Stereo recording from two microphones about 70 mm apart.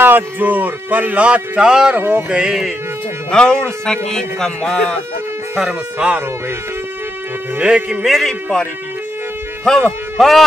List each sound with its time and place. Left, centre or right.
0.0 s speech: right; by 2.0 s centre
2.0 s speech: right
2.3 s speech: centre
3.3 s a man's voice: centre
5.6 s speech: centre
7.5 s speech: centre
8.0 s speech: centre
9.7 s speech: centre